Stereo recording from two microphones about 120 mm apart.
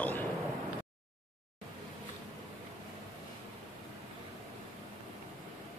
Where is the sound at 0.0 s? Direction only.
15° left (ahead or behind).